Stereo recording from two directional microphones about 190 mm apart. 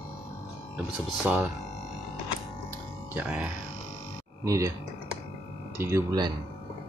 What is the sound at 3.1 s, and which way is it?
Speech, 5° right (ahead or behind).